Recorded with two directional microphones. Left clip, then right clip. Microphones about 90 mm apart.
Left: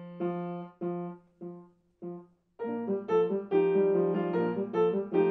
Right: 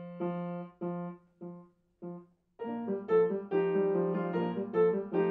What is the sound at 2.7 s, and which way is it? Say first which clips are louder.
Music: left 1 dB; 10° left (ahead or behind).